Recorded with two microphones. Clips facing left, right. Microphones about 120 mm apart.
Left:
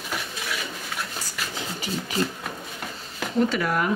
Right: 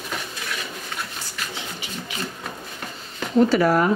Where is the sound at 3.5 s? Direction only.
35° right (ahead or behind).